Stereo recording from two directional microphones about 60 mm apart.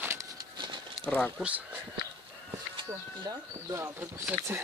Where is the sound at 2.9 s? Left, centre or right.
Right.